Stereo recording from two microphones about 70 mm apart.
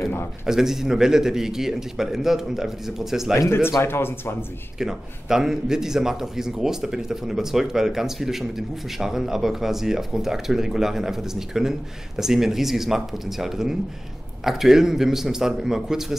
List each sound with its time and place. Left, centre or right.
0.0 s a sound: left
0.5 s a man's voice: centre
3.3 s speech: left
4.7 s a man's voice: centre